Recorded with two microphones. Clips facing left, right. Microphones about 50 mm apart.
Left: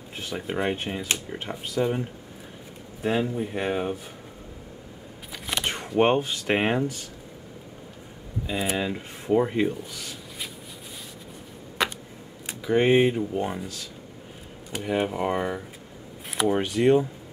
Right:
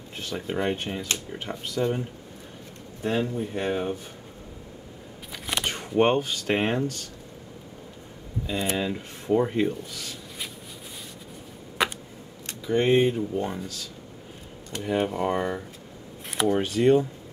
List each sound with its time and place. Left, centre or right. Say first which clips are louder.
0.1 s speech: even; centre
5.3 s a sound: even; centre
5.7 s speech: left 1 dB; centre
8.5 s speech: even; centre
11.8 s a sound: right 1 dB; centre
12.4 s speech: left 2 dB; centre
14.7 s speech: even; centre
16.6 s speech: even; centre